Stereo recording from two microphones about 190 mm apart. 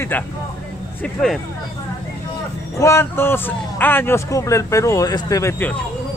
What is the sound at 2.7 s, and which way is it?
A man's voice, 15° left (ahead or behind).